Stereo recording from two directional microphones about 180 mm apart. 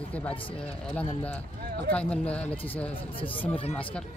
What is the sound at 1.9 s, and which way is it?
Speech, 5° left (ahead or behind).